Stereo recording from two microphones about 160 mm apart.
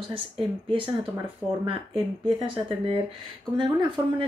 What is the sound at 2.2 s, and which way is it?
Speech, 35° right (ahead or behind).